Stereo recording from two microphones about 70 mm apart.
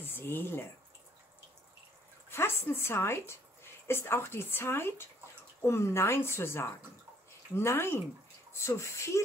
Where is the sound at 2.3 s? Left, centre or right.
Left.